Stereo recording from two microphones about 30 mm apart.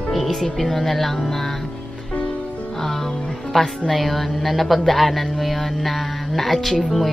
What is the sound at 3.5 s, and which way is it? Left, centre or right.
A woman's voice, centre.